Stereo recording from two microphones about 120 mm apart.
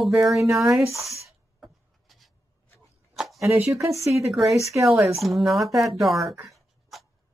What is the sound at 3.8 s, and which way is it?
Speech, 25° right (ahead or behind).